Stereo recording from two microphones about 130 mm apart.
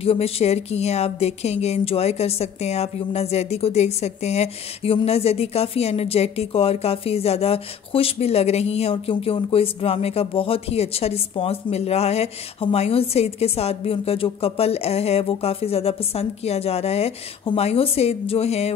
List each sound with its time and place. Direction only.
0.0 s speech: 50° left (ahead or behind)